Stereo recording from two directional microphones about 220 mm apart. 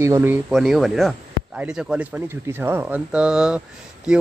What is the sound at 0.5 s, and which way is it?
Speech, centre (ahead or behind).